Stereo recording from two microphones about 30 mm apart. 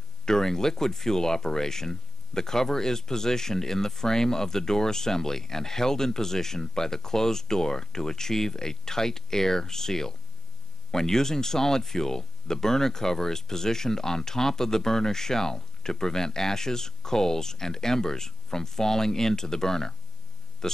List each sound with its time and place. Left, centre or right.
0.2 s speech: centre